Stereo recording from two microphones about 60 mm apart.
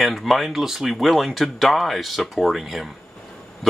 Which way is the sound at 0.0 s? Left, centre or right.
Centre.